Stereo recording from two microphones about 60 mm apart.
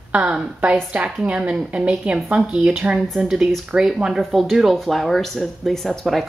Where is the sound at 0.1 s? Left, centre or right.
Right.